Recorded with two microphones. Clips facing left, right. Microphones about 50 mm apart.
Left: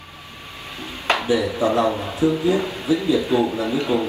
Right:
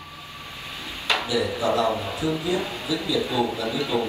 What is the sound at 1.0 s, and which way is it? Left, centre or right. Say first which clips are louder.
Speech: left 4 dB; left.